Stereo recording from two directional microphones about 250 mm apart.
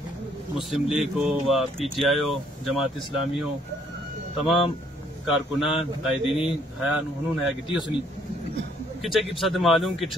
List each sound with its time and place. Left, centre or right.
0.6 s speech: centre
5.2 s speech: centre
7.6 s a man's voice: centre
9.0 s speech: centre